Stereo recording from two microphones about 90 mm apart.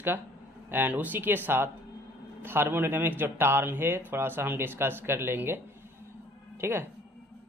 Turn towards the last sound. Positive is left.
turn(degrees=-30)  # may be behind; listen again after turning